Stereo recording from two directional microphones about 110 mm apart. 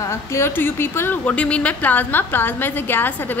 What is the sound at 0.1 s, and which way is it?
Speech, 25° left (ahead or behind).